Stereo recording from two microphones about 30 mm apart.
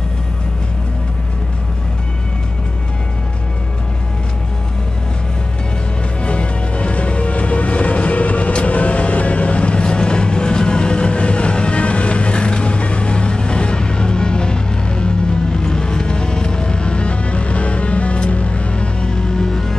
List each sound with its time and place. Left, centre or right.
6.2 s music: left
8.5 s vehicle: left
9.8 s music: left